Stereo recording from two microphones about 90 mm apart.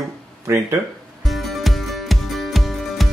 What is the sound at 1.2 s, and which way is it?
Music, centre (ahead or behind).